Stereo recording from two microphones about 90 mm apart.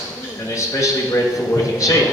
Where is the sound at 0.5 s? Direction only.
35° left (ahead or behind).